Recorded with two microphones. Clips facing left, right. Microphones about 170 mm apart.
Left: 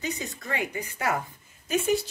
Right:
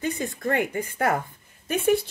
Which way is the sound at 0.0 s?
55° right (ahead or behind).